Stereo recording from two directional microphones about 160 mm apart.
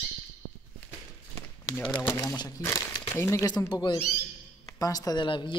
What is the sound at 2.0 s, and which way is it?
Speech, 20° left (ahead or behind).